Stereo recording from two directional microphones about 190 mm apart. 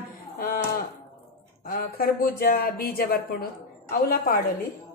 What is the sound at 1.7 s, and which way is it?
Speech, 50° left (ahead or behind).